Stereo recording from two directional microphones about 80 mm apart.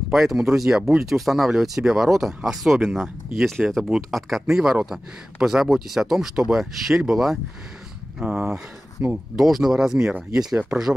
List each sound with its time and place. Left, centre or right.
0.1 s speech: centre
9.4 s speech: centre